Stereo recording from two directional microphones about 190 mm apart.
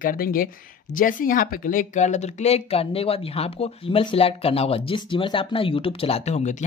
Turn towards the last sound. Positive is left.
turn(degrees=40)  # may be behind; listen again after turning